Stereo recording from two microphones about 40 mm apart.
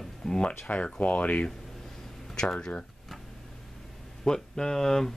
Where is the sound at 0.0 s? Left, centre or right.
Centre.